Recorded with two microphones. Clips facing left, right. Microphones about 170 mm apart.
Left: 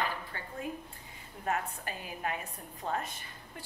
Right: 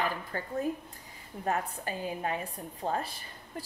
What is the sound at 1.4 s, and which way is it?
A woman's voice, 30° right (ahead or behind).